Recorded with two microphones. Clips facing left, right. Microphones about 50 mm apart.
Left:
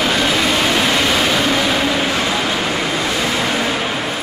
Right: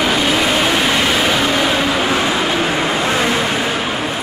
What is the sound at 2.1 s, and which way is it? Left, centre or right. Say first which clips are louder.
Vehicle: right 2 dB; right.